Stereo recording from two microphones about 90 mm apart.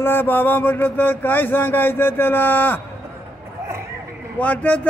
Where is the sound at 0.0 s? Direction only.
25° left (ahead or behind).